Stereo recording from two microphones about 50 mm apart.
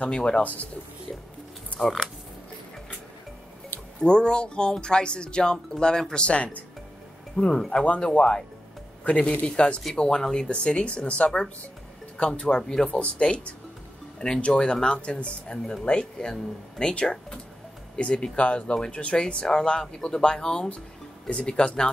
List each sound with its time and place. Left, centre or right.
0.0 s speech: centre
0.4 s speech: left
4.0 s speech: centre
9.9 s speech: centre